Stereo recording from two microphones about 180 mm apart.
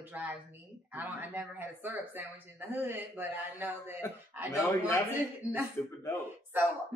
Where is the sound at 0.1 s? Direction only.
10° right (ahead or behind).